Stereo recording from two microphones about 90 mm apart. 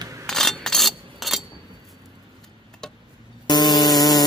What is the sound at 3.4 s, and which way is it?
Static, 50° left (ahead or behind).